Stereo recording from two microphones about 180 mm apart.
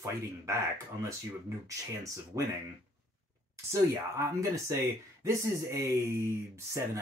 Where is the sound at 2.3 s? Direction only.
15° right (ahead or behind).